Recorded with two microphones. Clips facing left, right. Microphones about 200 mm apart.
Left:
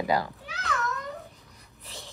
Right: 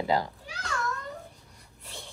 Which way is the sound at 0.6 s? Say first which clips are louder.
Left 2 dB; 20° left (ahead or behind).